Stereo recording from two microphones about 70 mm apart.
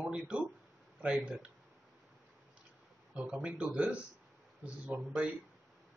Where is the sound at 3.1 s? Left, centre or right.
Centre.